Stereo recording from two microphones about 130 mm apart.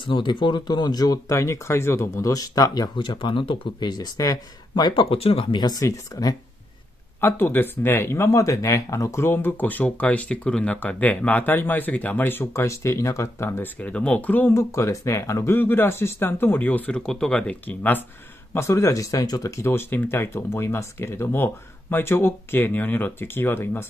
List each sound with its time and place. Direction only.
0.0 s speech: 40° left (ahead or behind)
5.1 s speech: 45° left (ahead or behind); by 23.9 s 15° left (ahead or behind)